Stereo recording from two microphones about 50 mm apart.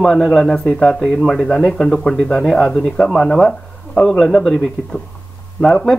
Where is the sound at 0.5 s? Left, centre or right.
Centre.